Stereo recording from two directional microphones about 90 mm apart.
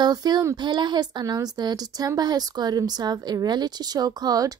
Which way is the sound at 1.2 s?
45° right (ahead or behind).